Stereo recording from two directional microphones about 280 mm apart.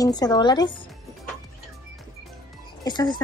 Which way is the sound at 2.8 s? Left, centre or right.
Centre.